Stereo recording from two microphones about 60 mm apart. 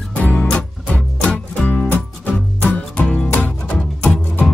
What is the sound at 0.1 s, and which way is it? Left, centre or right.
Music, left.